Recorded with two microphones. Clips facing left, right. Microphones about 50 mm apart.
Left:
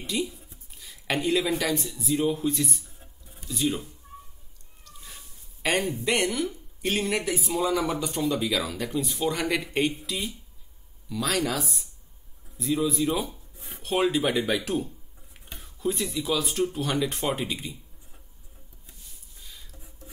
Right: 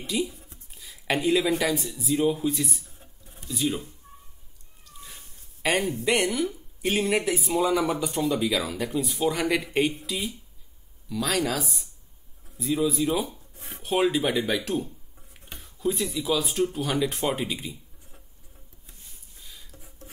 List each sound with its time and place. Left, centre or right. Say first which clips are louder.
0.0 s speech: right 1 dB; centre
4.8 s cat: right 1 dB; centre
6.0 s speech: right 3 dB; centre
8.1 s speech: right 1 dB; centre
13.6 s a sound: right 4 dB; right
13.8 s speech: right 1 dB; centre
19.4 s a sound: even; centre